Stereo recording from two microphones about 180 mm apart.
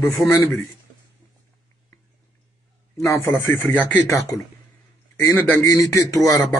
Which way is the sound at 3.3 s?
15° left (ahead or behind).